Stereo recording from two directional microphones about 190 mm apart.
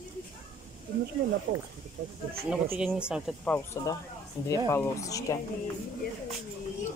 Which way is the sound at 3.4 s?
10° left (ahead or behind).